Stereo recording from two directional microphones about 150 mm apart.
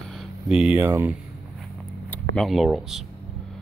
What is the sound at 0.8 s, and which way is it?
Speech, 15° right (ahead or behind).